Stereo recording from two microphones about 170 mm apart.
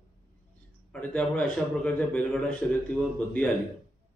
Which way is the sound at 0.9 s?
5° left (ahead or behind).